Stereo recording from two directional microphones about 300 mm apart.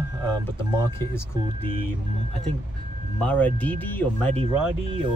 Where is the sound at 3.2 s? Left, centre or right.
Centre.